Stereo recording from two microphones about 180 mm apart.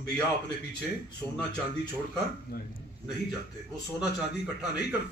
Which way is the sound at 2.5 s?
60° left (ahead or behind).